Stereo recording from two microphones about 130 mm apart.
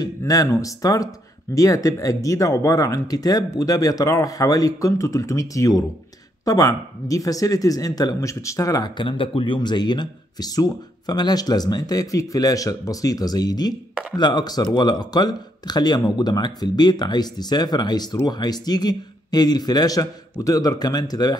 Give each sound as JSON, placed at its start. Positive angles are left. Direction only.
{"t": 0.2, "sound": "speech", "side_deg": 25}